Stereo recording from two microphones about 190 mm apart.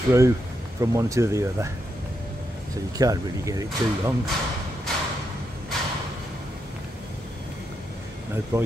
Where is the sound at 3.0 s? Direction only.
20° right (ahead or behind).